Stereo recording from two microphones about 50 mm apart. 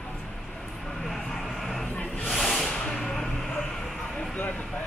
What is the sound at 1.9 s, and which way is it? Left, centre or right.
Snake, left.